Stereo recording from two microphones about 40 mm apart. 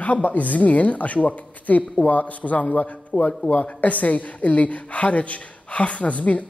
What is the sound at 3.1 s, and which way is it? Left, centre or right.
Speech, left.